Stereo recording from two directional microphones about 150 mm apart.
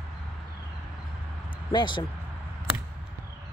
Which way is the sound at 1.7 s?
30° left (ahead or behind).